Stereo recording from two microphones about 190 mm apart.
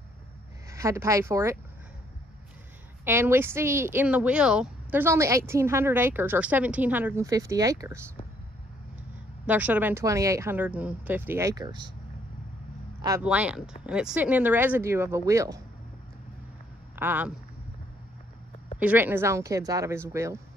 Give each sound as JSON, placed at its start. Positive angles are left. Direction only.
{"t": 0.7, "sound": "speech", "side_deg": -15}
{"t": 3.1, "sound": "speech", "side_deg": -15}
{"t": 9.5, "sound": "speech", "side_deg": -10}
{"t": 13.2, "sound": "speech", "side_deg": -5}
{"t": 16.9, "sound": "speech", "side_deg": -10}
{"t": 18.8, "sound": "speech", "side_deg": -10}